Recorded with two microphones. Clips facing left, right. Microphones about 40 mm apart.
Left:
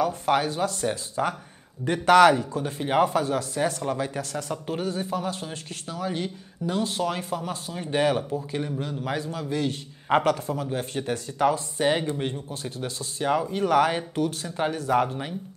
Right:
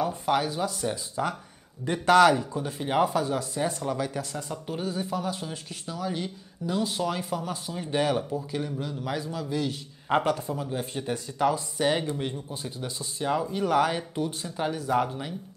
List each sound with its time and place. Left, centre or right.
0.3 s speech: left
2.6 s speech: left
3.3 s speech: left
3.9 s speech: left